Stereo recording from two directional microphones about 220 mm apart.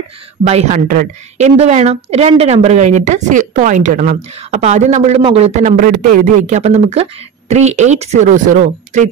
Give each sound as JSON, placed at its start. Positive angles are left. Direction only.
{"t": 0.4, "sound": "a woman's voice", "side_deg": -30}